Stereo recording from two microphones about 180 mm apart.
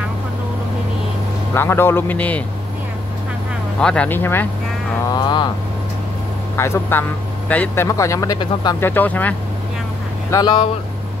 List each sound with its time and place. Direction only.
1.5 s speech: 15° left (ahead or behind)
3.8 s speech: 5° left (ahead or behind)
5.1 s vehicle: 25° left (ahead or behind)
6.5 s speech: 15° left (ahead or behind)
8.8 s speech: 10° left (ahead or behind)
10.3 s speech: 25° left (ahead or behind)